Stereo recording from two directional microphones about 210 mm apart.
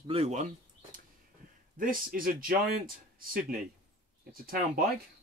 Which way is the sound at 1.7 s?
40° right (ahead or behind).